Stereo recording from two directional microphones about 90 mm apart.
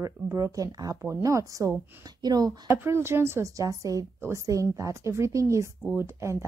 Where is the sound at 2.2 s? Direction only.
45° right (ahead or behind).